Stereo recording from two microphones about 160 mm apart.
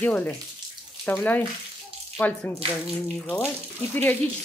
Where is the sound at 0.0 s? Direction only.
10° left (ahead or behind).